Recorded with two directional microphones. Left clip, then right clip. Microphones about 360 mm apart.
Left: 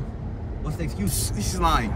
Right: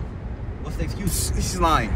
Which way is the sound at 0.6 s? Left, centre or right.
Centre.